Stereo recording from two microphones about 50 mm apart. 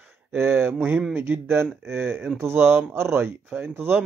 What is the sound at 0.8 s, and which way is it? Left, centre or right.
Speech, right.